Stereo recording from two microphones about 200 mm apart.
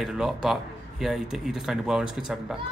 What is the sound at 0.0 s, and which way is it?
Speech, centre (ahead or behind).